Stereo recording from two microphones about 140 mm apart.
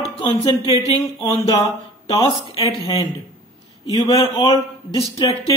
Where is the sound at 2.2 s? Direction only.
35° left (ahead or behind).